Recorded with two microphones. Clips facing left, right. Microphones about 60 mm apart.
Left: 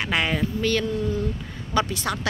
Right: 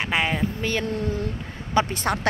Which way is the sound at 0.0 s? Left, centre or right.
Right.